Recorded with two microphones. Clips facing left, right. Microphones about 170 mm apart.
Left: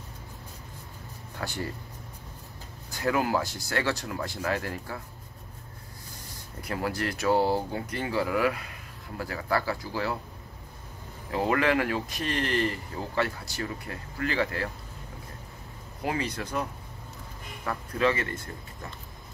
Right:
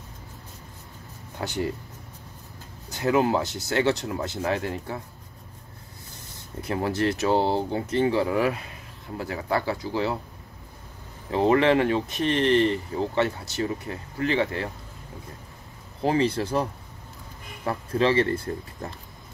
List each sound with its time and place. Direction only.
1.4 s speech: 20° right (ahead or behind)
2.9 s speech: 25° right (ahead or behind)
6.7 s speech: 25° right (ahead or behind)
11.3 s speech: 25° right (ahead or behind)
16.0 s speech: 30° right (ahead or behind)
17.6 s speech: 30° right (ahead or behind)